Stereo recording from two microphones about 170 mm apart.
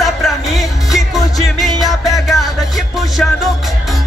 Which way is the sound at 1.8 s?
20° left (ahead or behind).